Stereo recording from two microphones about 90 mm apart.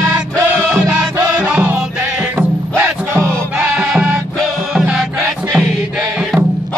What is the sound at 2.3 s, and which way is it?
Music, 25° right (ahead or behind).